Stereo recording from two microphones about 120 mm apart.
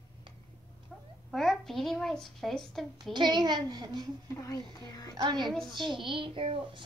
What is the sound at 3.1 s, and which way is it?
Speech, 40° right (ahead or behind).